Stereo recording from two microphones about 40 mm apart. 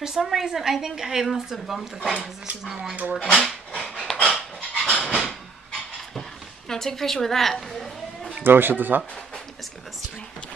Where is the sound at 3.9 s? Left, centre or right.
Centre.